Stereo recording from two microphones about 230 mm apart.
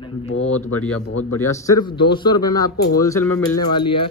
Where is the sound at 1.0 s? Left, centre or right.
Left.